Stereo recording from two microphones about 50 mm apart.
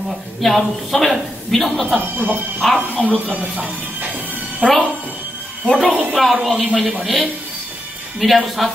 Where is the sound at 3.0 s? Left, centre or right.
Left.